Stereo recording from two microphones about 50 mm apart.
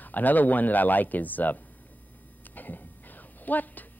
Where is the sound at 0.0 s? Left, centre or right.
Left.